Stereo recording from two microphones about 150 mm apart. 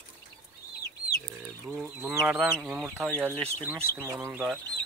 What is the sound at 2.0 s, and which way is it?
Speech, 10° right (ahead or behind).